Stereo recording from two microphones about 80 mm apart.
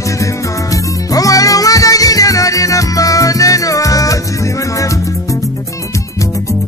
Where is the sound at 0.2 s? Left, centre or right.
Left.